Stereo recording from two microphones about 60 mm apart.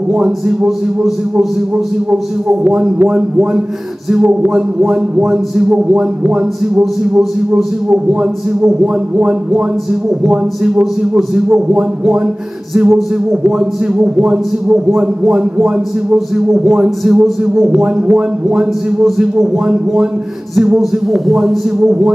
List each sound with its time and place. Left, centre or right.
0.1 s a man's voice: centre
0.7 s speech: centre
2.0 s a man's voice: centre
4.8 s a man's voice: centre
10.8 s a man's voice: centre
12.7 s a man's voice: centre
17.6 s a man's voice: centre
19.4 s a man's voice: centre